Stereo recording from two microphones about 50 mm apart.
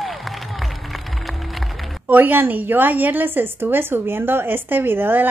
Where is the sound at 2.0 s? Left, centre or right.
Right.